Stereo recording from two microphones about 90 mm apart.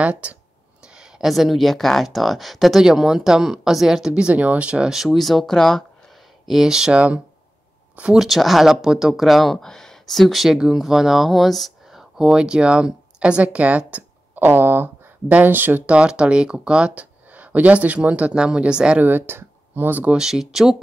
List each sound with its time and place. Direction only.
0.0 s speech: 15° right (ahead or behind)
0.9 s speech: 5° right (ahead or behind)
8.2 s speech: centre (ahead or behind)
19.0 s speech: 25° right (ahead or behind)
20.2 s speech: 5° right (ahead or behind)